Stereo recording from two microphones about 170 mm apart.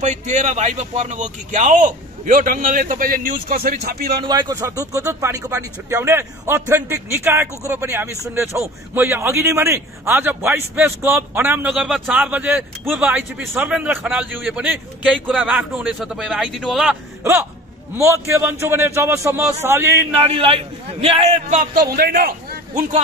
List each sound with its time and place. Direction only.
0.0 s a man's voice: 45° right (ahead or behind); by 4.1 s 60° right (ahead or behind)
4.2 s speech: 25° right (ahead or behind)
20.2 s a man's voice: 35° right (ahead or behind)
21.9 s a man's voice: 65° right (ahead or behind)